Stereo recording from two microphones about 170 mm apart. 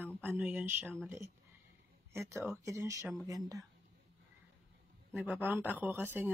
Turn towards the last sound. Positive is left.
turn(degrees=-10)  # may be behind; listen again after turning